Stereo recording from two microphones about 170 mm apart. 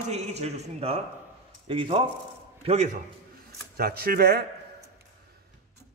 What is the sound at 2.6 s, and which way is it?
Speech, 40° right (ahead or behind).